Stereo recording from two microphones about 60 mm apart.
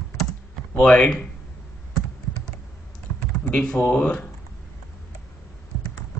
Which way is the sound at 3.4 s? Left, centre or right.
Centre.